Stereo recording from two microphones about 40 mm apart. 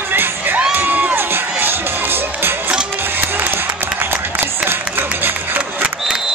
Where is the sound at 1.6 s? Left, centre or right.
Right.